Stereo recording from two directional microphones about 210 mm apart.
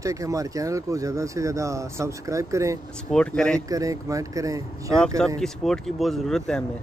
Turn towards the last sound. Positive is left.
turn(degrees=5)  # may be behind; listen again after turning